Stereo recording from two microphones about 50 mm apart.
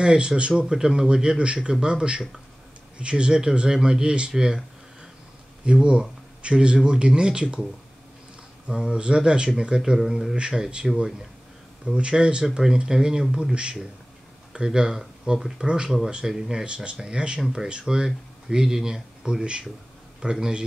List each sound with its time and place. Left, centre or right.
0.0 s speech: centre
5.7 s speech: centre
8.6 s speech: centre
12.4 s speech: centre